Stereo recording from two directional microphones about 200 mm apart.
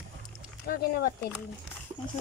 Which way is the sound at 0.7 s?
50° left (ahead or behind).